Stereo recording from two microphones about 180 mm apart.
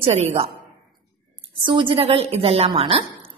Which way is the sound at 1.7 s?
30° right (ahead or behind).